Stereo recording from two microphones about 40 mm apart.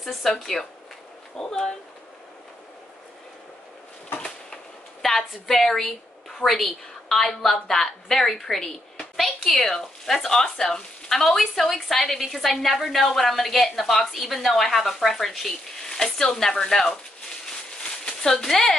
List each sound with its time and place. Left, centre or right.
0.0 s speech: centre
1.3 s speech: centre
5.0 s a woman's voice: centre
16.0 s speech: centre
18.0 s speech: centre